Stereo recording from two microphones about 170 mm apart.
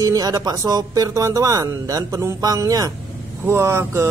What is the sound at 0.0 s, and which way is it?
Speech, 20° right (ahead or behind).